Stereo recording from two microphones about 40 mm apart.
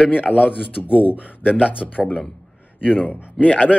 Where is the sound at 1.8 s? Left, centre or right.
Centre.